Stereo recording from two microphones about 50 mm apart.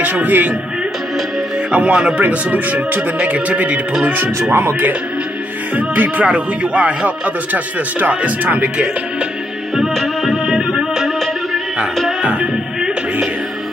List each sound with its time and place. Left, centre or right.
0.0 s speech: right
1.7 s a man's voice: centre
2.1 s a man's voice: right
4.0 s speech: right
5.8 s a man's voice: right
9.9 s music: centre
12.2 s music: right